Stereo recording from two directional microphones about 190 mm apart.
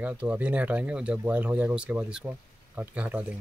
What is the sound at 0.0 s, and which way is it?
Speech, 5° right (ahead or behind).